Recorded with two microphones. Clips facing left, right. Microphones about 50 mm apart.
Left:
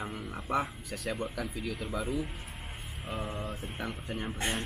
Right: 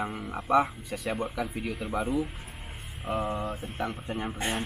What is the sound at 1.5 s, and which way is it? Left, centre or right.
Speech, right.